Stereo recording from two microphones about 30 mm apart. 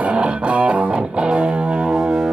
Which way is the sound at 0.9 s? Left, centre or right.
Right.